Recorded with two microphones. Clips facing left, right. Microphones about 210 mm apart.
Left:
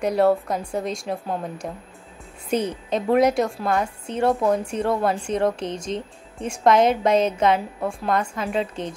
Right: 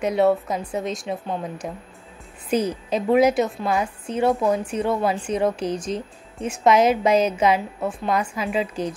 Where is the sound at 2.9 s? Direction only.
5° right (ahead or behind).